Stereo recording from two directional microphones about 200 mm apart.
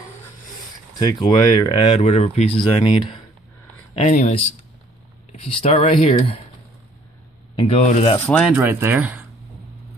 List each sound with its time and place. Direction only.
0.9 s speech: 20° left (ahead or behind); by 4.3 s 35° left (ahead or behind)
5.3 s speech: 30° left (ahead or behind)
7.6 s speech: 35° left (ahead or behind)
8.3 s speech: 5° left (ahead or behind)
8.5 s speech: 10° right (ahead or behind)